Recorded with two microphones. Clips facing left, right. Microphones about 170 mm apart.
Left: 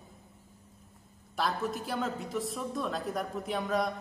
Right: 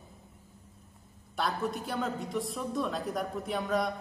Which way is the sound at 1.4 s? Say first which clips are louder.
Even; centre (ahead or behind).